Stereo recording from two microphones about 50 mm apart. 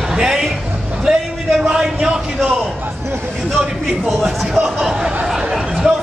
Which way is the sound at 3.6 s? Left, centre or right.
Centre.